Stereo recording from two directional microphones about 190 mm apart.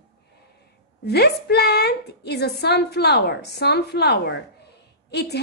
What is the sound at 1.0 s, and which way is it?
A woman's voice, 60° left (ahead or behind).